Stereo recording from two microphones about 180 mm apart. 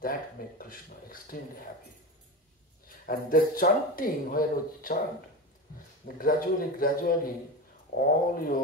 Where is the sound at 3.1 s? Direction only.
50° left (ahead or behind).